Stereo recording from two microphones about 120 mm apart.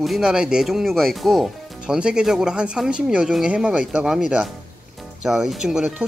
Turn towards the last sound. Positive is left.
turn(degrees=-5)  # may be behind; listen again after turning